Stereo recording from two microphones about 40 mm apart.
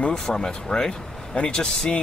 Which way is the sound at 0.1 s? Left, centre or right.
Centre.